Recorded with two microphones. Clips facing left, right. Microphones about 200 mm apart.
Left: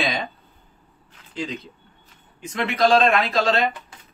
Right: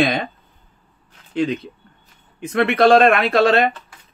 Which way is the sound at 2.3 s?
60° right (ahead or behind).